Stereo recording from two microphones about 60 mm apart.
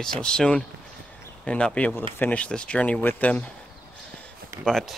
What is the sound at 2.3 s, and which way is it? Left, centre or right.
Speech, centre.